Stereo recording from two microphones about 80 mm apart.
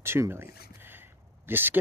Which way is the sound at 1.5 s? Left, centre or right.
Right.